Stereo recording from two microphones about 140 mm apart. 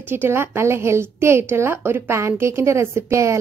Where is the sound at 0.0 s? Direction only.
15° right (ahead or behind).